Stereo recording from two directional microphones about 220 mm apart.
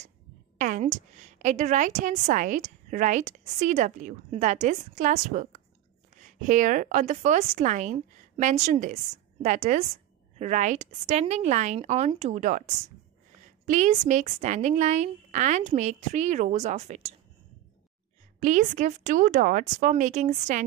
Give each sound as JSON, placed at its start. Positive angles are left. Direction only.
{"t": 0.6, "sound": "a woman's voice", "side_deg": -35}
{"t": 18.4, "sound": "a woman's voice", "side_deg": -35}